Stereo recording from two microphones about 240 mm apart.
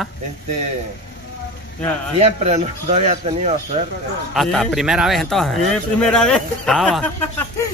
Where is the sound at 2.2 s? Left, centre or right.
Right.